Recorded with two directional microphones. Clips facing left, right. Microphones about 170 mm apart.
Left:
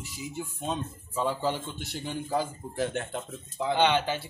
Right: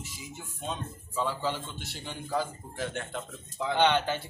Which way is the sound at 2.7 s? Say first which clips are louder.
Left 5 dB; 40° left (ahead or behind).